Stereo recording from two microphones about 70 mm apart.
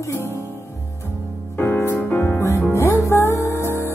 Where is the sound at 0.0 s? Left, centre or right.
Left.